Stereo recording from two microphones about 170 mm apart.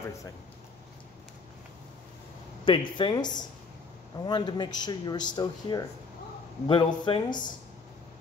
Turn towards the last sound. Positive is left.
turn(degrees=25)  # may be behind; listen again after turning